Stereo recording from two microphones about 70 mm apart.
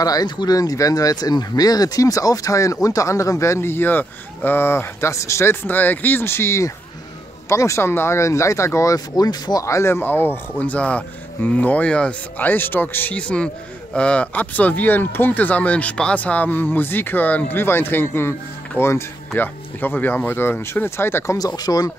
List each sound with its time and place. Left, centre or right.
0.0 s speech: left
9.7 s speech: left
10.6 s speech: centre
12.4 s speech: left
19.3 s speech: left
21.4 s speech: left